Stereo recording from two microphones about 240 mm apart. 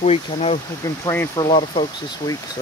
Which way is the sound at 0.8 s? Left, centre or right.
Centre.